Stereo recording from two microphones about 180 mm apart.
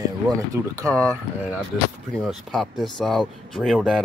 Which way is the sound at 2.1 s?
Centre (ahead or behind).